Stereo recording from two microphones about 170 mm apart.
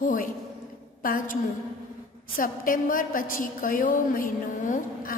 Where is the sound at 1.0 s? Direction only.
55° left (ahead or behind).